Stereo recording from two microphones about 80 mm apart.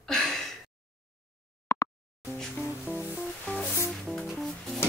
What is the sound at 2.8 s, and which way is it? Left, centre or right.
Music, centre.